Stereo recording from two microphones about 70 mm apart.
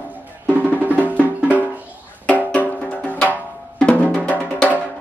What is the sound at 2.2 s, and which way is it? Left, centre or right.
Music, centre.